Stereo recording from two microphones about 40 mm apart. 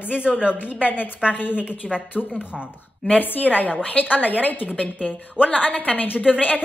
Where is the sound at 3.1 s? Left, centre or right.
Left.